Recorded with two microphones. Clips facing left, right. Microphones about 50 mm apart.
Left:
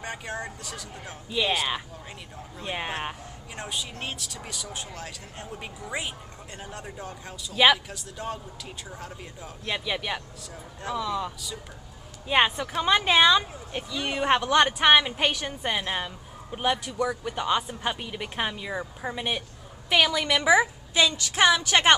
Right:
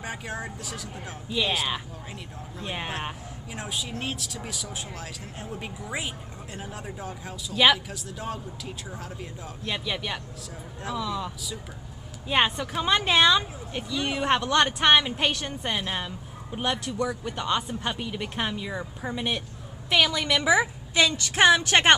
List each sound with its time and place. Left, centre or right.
0.0 s speech: centre
21.6 s speech: right